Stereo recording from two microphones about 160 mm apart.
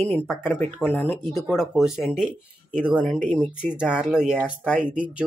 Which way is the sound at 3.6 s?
5° right (ahead or behind).